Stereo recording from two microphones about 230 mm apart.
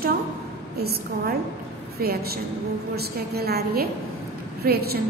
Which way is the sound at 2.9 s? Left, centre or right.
Right.